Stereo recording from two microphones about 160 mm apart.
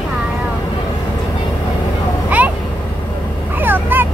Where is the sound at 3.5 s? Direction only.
10° right (ahead or behind).